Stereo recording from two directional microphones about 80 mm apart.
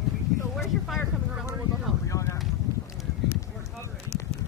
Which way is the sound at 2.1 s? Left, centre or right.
Left.